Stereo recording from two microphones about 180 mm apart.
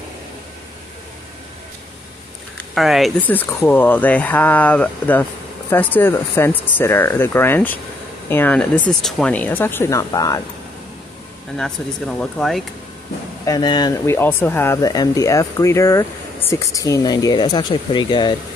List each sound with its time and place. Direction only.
2.5 s speech: centre (ahead or behind); by 10.4 s 20° left (ahead or behind)
11.5 s speech: 5° left (ahead or behind)
13.5 s speech: 25° left (ahead or behind)